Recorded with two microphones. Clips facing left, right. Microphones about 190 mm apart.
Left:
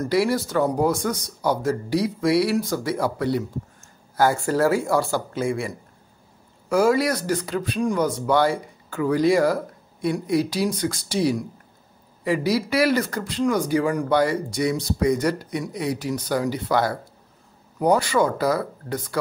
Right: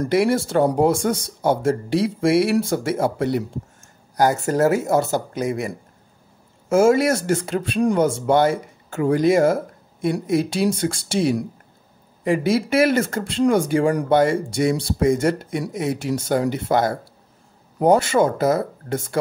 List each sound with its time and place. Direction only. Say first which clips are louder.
0.0 s speech: right 3 dB; 25° right (ahead or behind)